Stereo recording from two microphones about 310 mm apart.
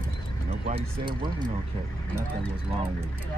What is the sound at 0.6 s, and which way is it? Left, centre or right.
Speech, centre.